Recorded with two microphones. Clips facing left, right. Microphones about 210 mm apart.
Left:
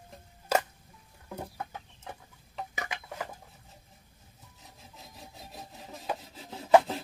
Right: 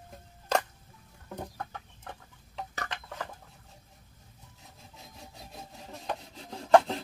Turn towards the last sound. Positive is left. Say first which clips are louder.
# even
turn(degrees=5)  # may be behind; listen again after turning